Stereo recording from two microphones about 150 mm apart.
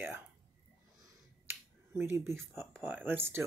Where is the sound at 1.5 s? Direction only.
15° right (ahead or behind).